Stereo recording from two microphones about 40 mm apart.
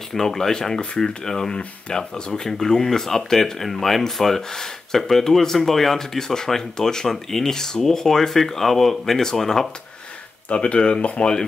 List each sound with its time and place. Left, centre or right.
0.1 s speech: centre
10.5 s speech: left